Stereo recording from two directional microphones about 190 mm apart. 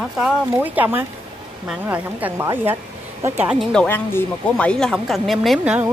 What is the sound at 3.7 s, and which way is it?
Speech, 10° left (ahead or behind).